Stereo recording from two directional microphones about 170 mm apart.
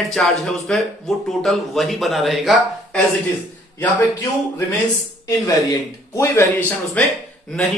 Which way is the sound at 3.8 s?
10° left (ahead or behind).